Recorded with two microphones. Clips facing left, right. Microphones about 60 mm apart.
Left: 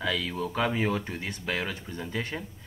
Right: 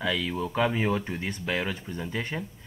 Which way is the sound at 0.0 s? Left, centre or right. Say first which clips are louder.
Right 1 dB; centre.